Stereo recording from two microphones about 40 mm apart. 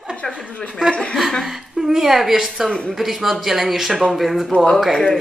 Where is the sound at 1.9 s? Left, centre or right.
Centre.